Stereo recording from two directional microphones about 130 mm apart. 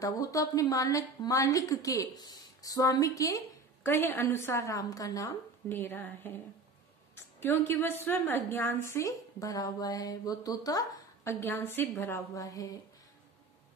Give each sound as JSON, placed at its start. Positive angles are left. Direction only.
{"t": 0.0, "sound": "a woman's voice", "side_deg": 25}
{"t": 5.7, "sound": "a woman's voice", "side_deg": 15}
{"t": 11.3, "sound": "a woman's voice", "side_deg": 15}